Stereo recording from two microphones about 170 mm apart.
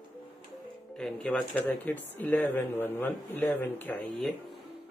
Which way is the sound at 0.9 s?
5° left (ahead or behind).